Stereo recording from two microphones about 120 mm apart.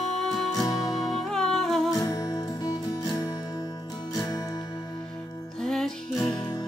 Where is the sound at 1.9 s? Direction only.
30° left (ahead or behind).